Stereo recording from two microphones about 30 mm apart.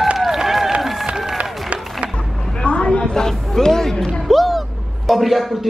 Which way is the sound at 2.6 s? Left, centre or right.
Left.